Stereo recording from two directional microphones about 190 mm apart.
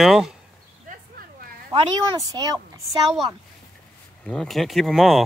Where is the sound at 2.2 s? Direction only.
20° right (ahead or behind).